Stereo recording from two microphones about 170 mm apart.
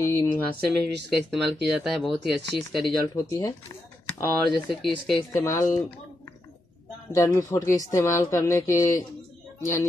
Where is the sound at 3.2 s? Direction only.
20° left (ahead or behind).